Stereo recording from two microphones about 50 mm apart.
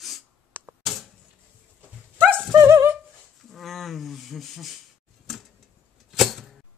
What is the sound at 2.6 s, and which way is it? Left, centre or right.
Music, right.